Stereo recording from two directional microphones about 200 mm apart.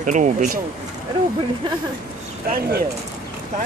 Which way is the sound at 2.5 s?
50° right (ahead or behind).